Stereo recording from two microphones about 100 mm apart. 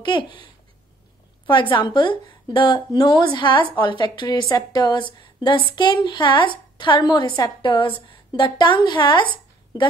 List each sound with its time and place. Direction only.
0.0 s a woman's voice: 55° left (ahead or behind)